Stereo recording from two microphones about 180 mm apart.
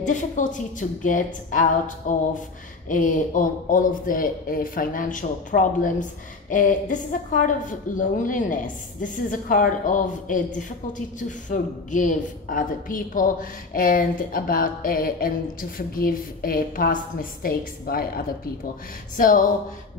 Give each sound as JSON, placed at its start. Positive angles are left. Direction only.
{"t": 0.0, "sound": "speech", "side_deg": 45}